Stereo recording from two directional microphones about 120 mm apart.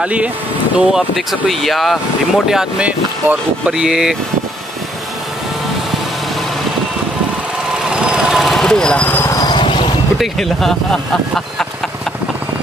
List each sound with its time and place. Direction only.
0.0 s speech: 10° right (ahead or behind)
7.8 s vehicle: 5° right (ahead or behind); by 9.4 s 20° left (ahead or behind)
9.5 s a sound: 45° left (ahead or behind)
10.1 s speech: centre (ahead or behind)